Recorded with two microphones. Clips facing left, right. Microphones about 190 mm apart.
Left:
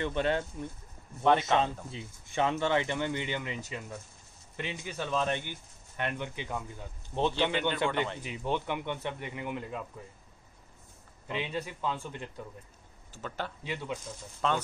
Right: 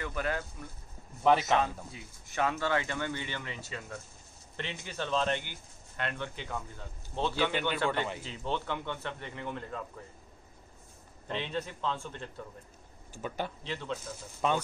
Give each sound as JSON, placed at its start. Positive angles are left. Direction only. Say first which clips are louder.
{"t": 0.0, "sound": "speech", "louder": "left 5 dB", "side_deg": 25}
{"t": 1.2, "sound": "a man's voice", "louder": "even", "side_deg": -5}
{"t": 1.9, "sound": "speech", "louder": "left 5 dB", "side_deg": 25}
{"t": 11.2, "sound": "speech", "louder": "even", "side_deg": 10}
{"t": 13.1, "sound": "speech", "louder": "right 2 dB", "side_deg": -10}
{"t": 13.7, "sound": "speech", "louder": "left 1 dB", "side_deg": 10}
{"t": 14.4, "sound": "speech", "louder": "right 1 dB", "side_deg": -15}